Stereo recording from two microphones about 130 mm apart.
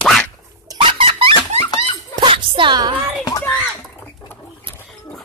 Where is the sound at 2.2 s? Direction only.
40° right (ahead or behind).